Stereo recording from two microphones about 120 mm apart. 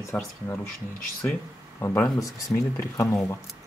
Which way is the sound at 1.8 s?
20° left (ahead or behind).